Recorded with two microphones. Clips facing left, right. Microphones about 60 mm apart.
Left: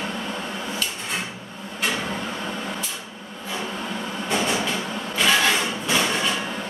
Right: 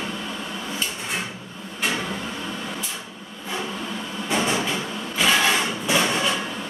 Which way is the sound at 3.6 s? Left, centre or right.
Left.